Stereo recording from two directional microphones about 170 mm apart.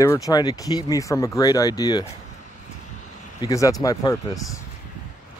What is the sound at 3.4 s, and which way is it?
Speech, 20° left (ahead or behind).